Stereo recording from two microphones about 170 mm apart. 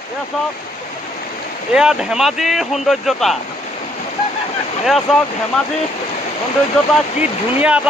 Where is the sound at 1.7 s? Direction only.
5° right (ahead or behind).